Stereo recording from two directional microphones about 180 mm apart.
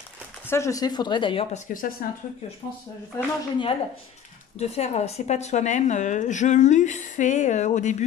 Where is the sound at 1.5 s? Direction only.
50° left (ahead or behind).